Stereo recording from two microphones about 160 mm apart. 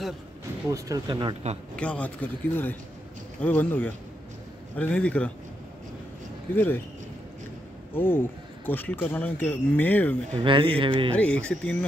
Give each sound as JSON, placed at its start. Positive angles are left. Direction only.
{"t": 0.7, "sound": "speech", "side_deg": -20}
{"t": 1.8, "sound": "speech", "side_deg": 10}
{"t": 6.5, "sound": "speech", "side_deg": 10}
{"t": 7.9, "sound": "speech", "side_deg": 10}
{"t": 10.4, "sound": "speech", "side_deg": -30}
{"t": 11.1, "sound": "speech", "side_deg": 10}